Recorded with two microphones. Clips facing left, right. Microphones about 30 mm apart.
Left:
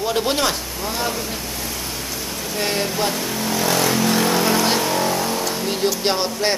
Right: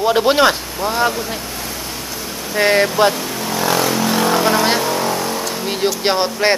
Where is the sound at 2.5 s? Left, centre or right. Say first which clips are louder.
Right 9 dB; right.